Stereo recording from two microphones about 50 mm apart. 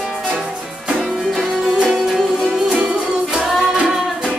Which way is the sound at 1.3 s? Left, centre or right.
Centre.